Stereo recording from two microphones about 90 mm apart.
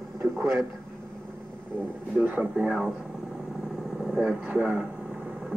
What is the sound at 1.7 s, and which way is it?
Speech, 20° right (ahead or behind).